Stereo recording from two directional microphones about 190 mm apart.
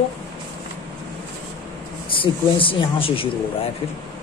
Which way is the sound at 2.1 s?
25° left (ahead or behind).